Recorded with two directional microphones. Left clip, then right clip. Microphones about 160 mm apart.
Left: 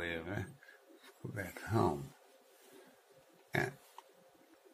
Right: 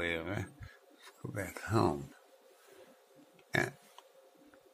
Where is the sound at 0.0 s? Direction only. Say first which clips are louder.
Right 4 dB; 35° right (ahead or behind).